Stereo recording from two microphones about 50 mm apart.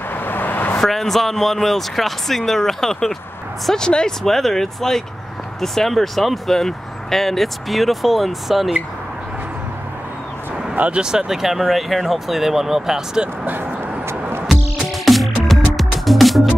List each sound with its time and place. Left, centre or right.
0.1 s vehicle: left
0.7 s speech: centre
10.8 s speech: centre
14.5 s music: centre